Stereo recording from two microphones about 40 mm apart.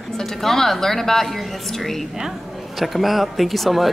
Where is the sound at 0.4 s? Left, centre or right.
Centre.